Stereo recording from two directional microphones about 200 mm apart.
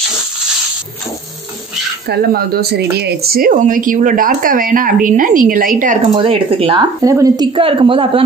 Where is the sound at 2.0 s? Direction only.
50° right (ahead or behind).